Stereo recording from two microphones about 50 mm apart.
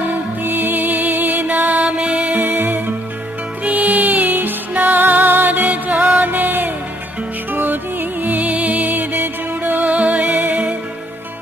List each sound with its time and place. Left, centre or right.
0.4 s music: right
1.9 s music: centre
2.4 s music: right